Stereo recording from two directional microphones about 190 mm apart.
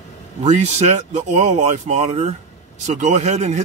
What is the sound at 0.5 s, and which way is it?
Speech, 35° right (ahead or behind).